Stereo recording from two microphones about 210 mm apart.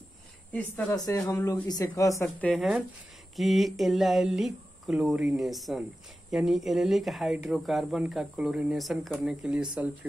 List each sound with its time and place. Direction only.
0.5 s speech: 10° left (ahead or behind)
2.2 s speech: centre (ahead or behind)